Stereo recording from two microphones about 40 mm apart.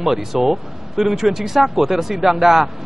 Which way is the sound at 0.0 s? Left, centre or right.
Centre.